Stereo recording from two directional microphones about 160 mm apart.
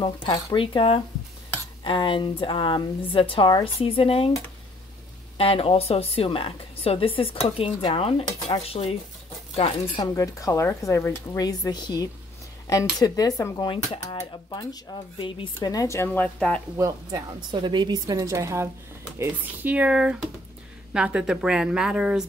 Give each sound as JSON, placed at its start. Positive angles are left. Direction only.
{"t": 0.0, "sound": "a woman's voice", "side_deg": 30}
{"t": 5.4, "sound": "a woman's voice", "side_deg": 40}
{"t": 10.1, "sound": "speech", "side_deg": 20}
{"t": 16.7, "sound": "a woman's voice", "side_deg": -20}